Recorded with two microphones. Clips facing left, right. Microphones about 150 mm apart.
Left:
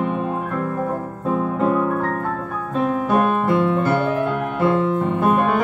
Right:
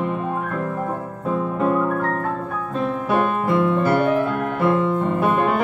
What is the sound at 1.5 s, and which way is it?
Music, centre (ahead or behind).